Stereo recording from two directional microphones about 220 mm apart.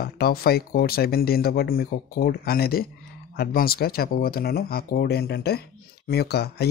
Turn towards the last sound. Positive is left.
turn(degrees=45)  # may be behind; listen again after turning